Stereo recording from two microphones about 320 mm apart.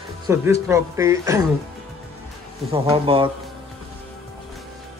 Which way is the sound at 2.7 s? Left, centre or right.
Centre.